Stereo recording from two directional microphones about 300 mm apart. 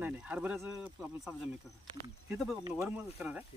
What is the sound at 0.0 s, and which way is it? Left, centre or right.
Speech, centre.